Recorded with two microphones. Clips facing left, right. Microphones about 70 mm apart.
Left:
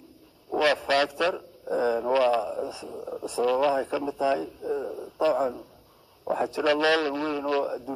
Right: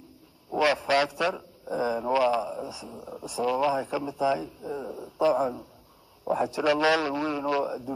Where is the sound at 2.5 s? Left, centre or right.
Centre.